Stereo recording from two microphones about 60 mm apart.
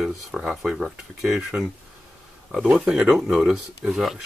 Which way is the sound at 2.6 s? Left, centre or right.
Centre.